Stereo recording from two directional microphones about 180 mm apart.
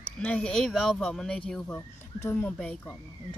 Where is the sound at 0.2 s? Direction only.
5° left (ahead or behind).